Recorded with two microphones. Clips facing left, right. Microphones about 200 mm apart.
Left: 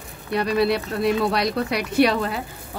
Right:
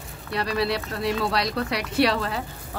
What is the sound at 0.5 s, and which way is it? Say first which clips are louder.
Speech: left 5 dB; 20° left (ahead or behind).